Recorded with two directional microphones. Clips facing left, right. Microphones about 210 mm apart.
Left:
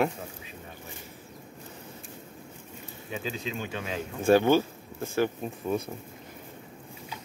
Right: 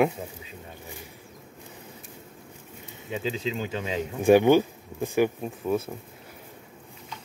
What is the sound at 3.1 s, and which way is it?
Speech, 20° right (ahead or behind).